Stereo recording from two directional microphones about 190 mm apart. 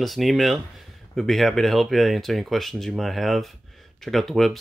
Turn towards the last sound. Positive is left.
turn(degrees=0)  # may be behind; listen again after turning